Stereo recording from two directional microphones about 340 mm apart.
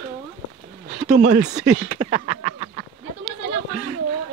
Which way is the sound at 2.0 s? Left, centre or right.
Centre.